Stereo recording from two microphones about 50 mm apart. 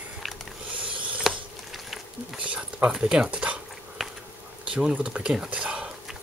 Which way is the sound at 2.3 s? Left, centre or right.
Right.